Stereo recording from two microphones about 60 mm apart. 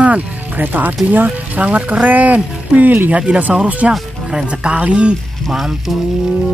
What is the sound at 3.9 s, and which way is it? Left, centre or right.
Speech, centre.